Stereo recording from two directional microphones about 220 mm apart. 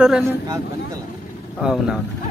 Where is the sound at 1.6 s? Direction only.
Centre (ahead or behind).